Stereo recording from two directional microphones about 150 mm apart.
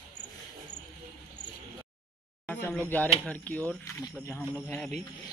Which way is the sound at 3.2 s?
10° left (ahead or behind).